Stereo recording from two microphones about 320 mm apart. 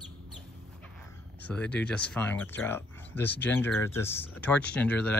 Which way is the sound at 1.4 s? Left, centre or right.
Centre.